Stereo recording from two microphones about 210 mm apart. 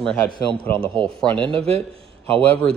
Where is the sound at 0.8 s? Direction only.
25° right (ahead or behind).